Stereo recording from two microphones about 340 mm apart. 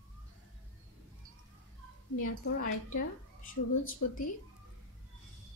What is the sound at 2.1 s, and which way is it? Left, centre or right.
Speech, left.